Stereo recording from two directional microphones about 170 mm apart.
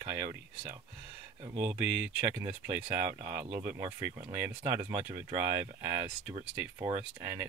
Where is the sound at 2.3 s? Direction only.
20° right (ahead or behind).